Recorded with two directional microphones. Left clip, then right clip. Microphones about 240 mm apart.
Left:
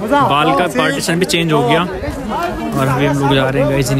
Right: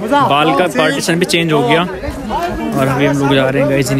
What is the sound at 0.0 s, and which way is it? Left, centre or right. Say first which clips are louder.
Speech: right 1 dB; left.